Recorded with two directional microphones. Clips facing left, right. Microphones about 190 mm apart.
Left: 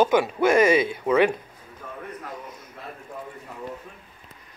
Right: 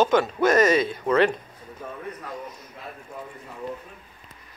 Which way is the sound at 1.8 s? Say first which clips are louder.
Right 2 dB; 30° right (ahead or behind).